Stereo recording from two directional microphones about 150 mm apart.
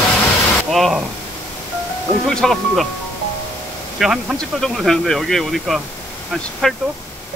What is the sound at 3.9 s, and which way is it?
Speech, centre (ahead or behind).